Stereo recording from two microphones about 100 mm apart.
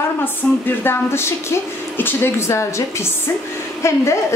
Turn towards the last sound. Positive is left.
turn(degrees=25)  # may be behind; listen again after turning